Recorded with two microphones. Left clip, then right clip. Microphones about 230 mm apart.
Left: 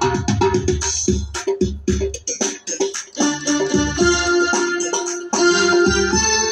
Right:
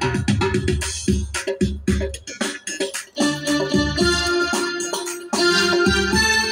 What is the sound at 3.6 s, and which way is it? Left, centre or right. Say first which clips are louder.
Music: left 3 dB; centre.